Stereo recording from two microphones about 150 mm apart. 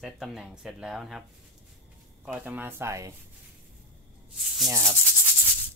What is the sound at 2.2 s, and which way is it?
Speech, 10° right (ahead or behind).